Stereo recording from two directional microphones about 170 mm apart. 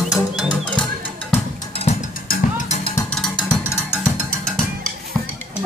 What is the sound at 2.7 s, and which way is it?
Drum, 40° left (ahead or behind).